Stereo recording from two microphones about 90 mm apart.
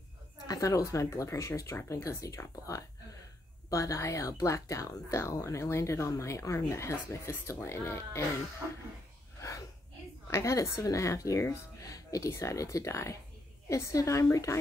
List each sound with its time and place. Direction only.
0.5 s speech: 40° left (ahead or behind)
3.7 s speech: 35° left (ahead or behind)
10.3 s speech: 35° left (ahead or behind)